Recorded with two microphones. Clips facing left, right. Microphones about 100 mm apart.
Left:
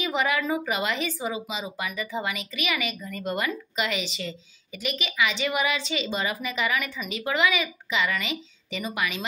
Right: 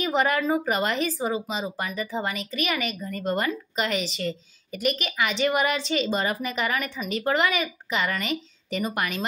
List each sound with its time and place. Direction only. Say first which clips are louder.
0.0 s a woman's voice: right 3 dB; 40° right (ahead or behind)